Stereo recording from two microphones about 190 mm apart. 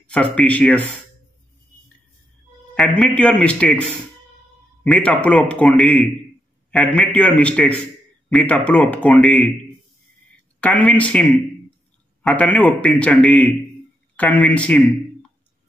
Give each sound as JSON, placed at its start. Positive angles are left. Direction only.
{"t": 0.0, "sound": "a man's voice", "side_deg": 5}
{"t": 2.7, "sound": "speech", "side_deg": 5}
{"t": 4.8, "sound": "a man's voice", "side_deg": 5}
{"t": 10.6, "sound": "a man's voice", "side_deg": 5}